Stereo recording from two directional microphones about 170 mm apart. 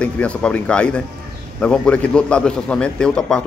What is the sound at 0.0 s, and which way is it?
A man's voice, 5° left (ahead or behind).